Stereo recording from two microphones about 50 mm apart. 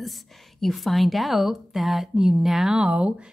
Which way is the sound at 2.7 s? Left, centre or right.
Right.